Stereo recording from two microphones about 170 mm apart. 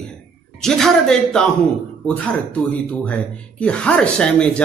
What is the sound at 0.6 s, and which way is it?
Speech, 5° left (ahead or behind).